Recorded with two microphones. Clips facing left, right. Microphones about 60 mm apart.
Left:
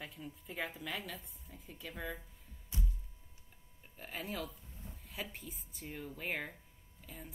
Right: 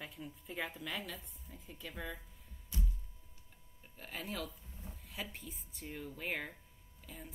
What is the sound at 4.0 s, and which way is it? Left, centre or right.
A woman's voice, centre.